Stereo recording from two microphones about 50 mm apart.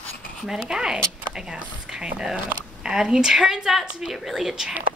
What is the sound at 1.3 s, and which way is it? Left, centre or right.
Speech, centre.